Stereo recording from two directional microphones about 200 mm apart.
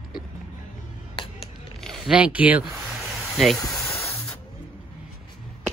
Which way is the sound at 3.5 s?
15° left (ahead or behind).